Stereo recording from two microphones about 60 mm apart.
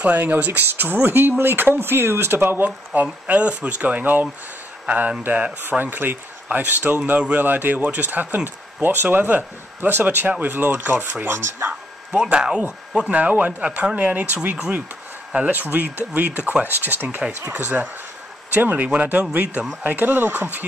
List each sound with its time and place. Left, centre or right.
0.0 s speech: right
11.2 s speech: right
12.3 s speech: centre; by 20.6 s right